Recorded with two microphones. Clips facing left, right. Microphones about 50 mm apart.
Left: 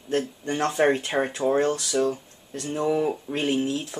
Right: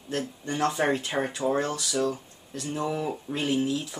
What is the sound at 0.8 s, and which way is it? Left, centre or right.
Speech, left.